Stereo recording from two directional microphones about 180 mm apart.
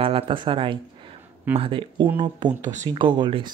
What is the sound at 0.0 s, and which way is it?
Speech, 30° right (ahead or behind).